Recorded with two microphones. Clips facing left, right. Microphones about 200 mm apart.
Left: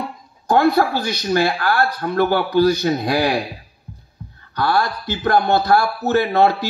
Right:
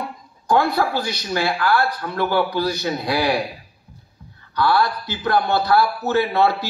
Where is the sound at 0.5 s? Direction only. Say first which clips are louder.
Left 3 dB; 45° left (ahead or behind).